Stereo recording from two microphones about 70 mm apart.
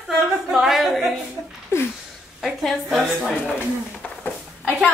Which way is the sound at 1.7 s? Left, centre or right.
Left.